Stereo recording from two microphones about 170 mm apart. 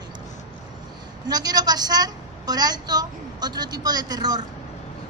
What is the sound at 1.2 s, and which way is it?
A woman's voice, 25° right (ahead or behind).